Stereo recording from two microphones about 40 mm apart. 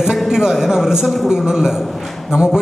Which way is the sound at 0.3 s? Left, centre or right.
Centre.